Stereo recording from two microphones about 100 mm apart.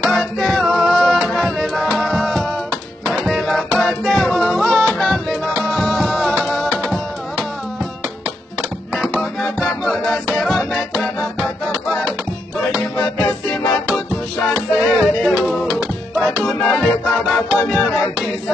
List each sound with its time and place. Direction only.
0.0 s music: centre (ahead or behind)
8.9 s music: centre (ahead or behind)
13.8 s music: centre (ahead or behind)